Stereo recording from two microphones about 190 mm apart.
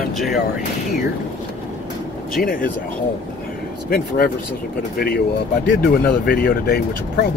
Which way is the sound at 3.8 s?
50° left (ahead or behind).